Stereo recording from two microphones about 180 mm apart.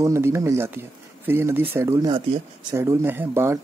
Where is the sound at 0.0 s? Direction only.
15° right (ahead or behind).